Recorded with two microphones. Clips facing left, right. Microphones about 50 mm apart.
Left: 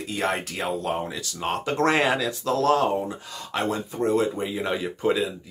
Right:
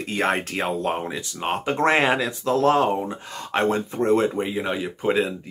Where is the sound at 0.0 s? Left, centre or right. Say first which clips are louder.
Right 3 dB; right.